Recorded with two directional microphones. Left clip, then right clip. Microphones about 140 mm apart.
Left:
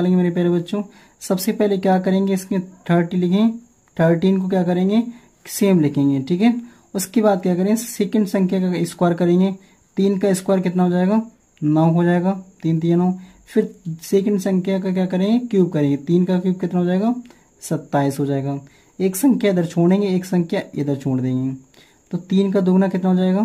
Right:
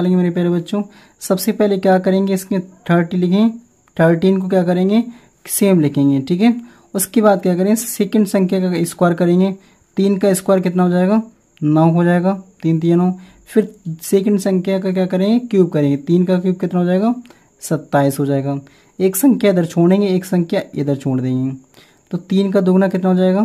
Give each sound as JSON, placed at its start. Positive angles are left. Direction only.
{"t": 0.0, "sound": "speech", "side_deg": -30}